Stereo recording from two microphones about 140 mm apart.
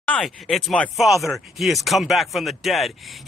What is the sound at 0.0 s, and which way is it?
Speech, 5° left (ahead or behind).